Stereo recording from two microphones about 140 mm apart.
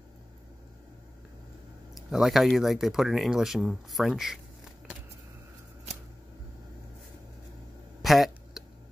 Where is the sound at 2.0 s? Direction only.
Centre (ahead or behind).